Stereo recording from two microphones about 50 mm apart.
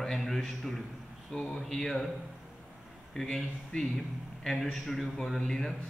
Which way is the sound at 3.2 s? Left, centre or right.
Centre.